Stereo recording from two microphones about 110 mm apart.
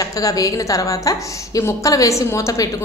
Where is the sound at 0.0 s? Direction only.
35° left (ahead or behind).